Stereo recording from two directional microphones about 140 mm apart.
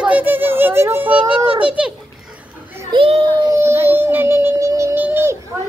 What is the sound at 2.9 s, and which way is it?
Speech, 40° right (ahead or behind).